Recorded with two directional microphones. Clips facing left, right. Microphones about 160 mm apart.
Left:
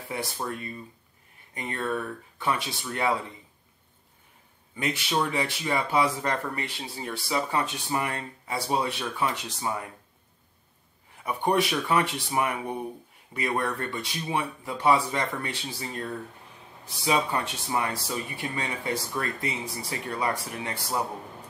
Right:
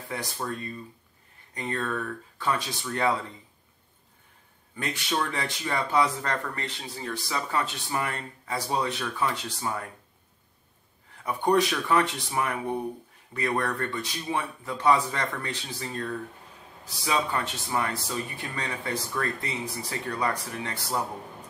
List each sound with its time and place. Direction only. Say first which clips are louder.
0.1 s speech: left 1 dB; 15° left (ahead or behind)
4.7 s speech: left 2 dB; 15° left (ahead or behind)
11.2 s speech: right 2 dB; 15° left (ahead or behind)